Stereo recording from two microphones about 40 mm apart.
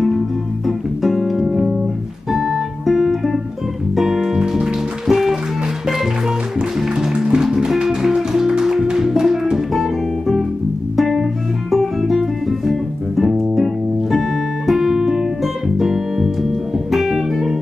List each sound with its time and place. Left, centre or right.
0.7 s music: centre
2.3 s guitar: centre
3.9 s music: centre
14.7 s music: centre